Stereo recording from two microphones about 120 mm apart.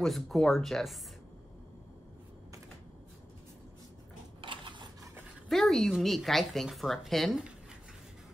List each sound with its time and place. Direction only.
0.0 s speech: centre (ahead or behind)
4.4 s a sound: 45° right (ahead or behind)
5.5 s speech: 5° left (ahead or behind)